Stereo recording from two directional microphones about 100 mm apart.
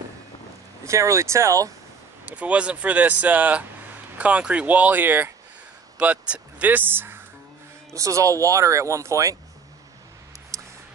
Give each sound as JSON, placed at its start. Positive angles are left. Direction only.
{"t": 0.8, "sound": "speech", "side_deg": -30}
{"t": 2.2, "sound": "speech", "side_deg": -15}
{"t": 7.9, "sound": "speech", "side_deg": -30}
{"t": 10.5, "sound": "a sound", "side_deg": -35}